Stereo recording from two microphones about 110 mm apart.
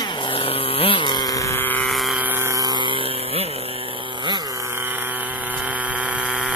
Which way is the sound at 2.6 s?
40° right (ahead or behind).